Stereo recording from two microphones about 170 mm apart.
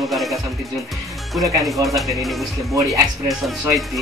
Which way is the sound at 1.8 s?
Centre (ahead or behind).